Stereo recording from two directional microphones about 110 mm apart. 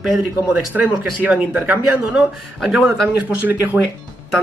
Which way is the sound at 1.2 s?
15° right (ahead or behind).